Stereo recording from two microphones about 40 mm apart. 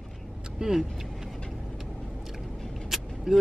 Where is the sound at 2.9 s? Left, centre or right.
Centre.